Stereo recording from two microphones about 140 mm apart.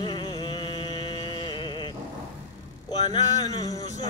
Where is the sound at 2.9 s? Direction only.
30° left (ahead or behind).